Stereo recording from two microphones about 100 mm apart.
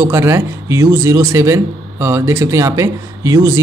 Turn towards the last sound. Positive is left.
turn(degrees=-35)  # may be behind; listen again after turning